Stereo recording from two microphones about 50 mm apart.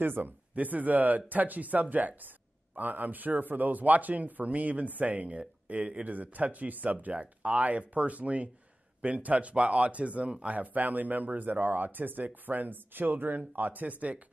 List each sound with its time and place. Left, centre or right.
0.0 s speech: right